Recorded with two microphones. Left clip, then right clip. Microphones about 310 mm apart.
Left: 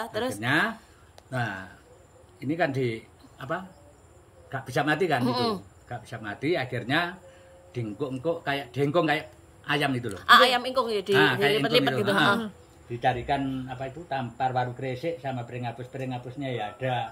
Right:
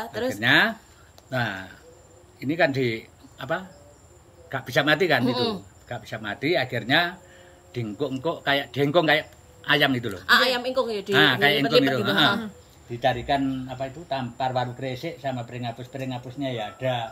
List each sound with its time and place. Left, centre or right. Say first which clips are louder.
0.4 s speech: right 8 dB; centre
12.1 s speech: even; left
13.3 s speech: right 3 dB; centre